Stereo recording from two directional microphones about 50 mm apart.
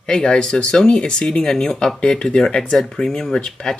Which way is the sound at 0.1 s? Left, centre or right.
Centre.